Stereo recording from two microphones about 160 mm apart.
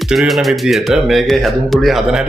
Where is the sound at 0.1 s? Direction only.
Centre (ahead or behind).